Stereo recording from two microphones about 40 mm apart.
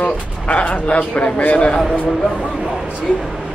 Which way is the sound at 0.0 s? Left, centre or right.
Left.